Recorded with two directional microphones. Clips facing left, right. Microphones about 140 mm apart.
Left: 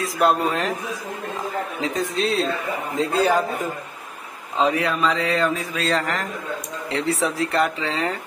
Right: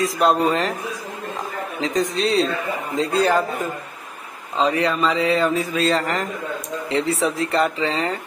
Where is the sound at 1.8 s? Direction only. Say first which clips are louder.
Right 4 dB; 5° left (ahead or behind).